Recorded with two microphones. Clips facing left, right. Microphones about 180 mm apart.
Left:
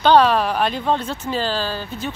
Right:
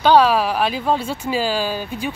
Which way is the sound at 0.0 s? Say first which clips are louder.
Even; 5° right (ahead or behind).